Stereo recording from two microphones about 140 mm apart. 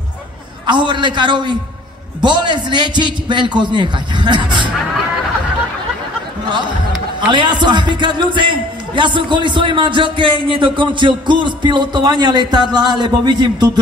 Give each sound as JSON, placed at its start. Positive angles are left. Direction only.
{"t": 0.7, "sound": "a man's voice", "side_deg": -35}
{"t": 7.2, "sound": "a man's voice", "side_deg": -35}